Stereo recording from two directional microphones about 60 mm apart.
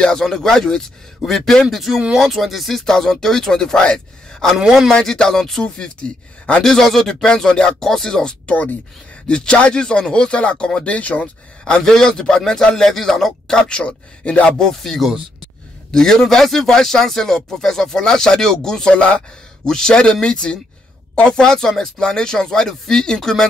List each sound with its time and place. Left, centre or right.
0.0 s speech: centre
4.6 s a man's voice: centre
4.9 s speech: centre
7.2 s speech: centre
11.6 s speech: centre
14.6 s speech: centre